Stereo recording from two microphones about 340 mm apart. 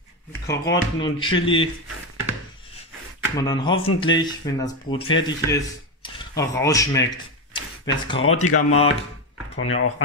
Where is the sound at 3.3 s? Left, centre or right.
Centre.